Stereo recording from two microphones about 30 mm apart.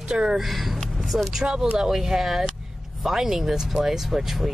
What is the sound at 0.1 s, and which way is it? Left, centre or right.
Speech, right.